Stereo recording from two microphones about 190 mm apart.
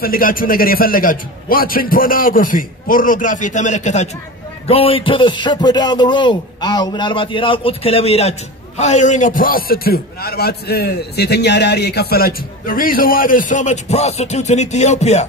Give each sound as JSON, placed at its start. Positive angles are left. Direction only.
{"t": 0.0, "sound": "a man's voice", "side_deg": 50}